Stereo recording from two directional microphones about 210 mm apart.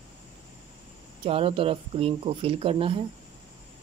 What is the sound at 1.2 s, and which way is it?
Speech, 25° right (ahead or behind).